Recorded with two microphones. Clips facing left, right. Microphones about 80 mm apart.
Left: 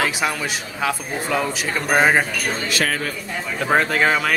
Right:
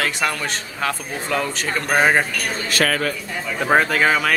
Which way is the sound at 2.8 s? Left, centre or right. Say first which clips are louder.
Right 5 dB; right.